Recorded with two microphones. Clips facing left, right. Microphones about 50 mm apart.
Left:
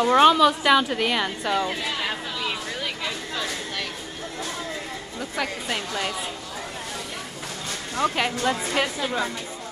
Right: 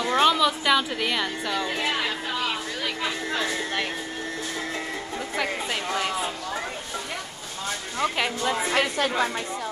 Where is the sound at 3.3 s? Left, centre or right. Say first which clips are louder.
Right 3 dB; right.